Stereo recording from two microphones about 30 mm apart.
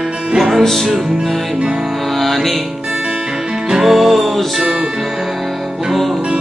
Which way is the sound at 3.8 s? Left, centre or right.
Centre.